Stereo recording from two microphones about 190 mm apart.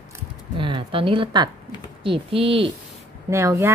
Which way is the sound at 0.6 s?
25° right (ahead or behind).